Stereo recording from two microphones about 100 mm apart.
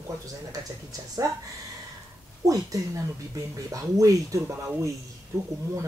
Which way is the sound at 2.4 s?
35° right (ahead or behind).